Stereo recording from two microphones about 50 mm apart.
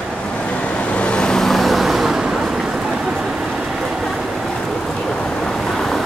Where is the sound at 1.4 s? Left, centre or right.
Centre.